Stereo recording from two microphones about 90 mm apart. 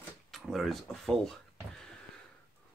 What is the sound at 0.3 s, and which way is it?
Speech, centre (ahead or behind).